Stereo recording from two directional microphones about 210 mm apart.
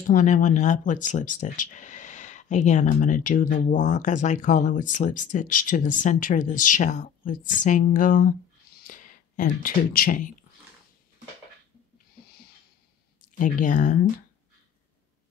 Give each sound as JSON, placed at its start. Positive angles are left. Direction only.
{"t": 0.1, "sound": "speech", "side_deg": 35}
{"t": 13.4, "sound": "speech", "side_deg": 40}